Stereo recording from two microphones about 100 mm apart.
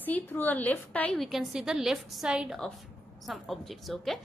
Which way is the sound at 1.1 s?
Centre (ahead or behind).